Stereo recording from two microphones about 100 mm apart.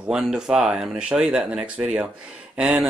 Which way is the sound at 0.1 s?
5° right (ahead or behind).